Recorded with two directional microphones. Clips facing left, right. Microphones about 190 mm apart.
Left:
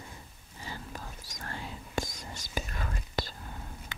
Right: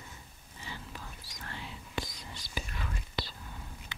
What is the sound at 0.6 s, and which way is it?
Whispering, 45° left (ahead or behind).